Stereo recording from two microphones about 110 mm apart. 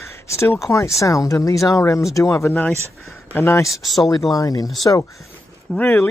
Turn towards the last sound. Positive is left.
turn(degrees=15)  # may be behind; listen again after turning